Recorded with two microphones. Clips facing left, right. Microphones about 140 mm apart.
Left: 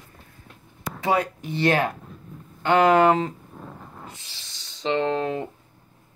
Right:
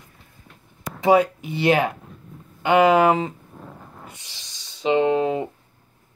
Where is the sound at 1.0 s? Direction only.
10° right (ahead or behind).